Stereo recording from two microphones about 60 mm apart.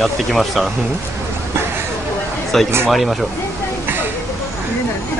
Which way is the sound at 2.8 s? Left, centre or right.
Centre.